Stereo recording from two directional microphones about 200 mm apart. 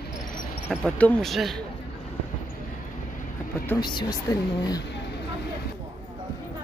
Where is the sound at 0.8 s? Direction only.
5° left (ahead or behind).